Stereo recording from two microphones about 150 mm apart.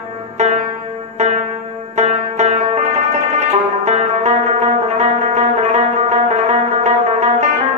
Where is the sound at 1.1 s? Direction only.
50° right (ahead or behind).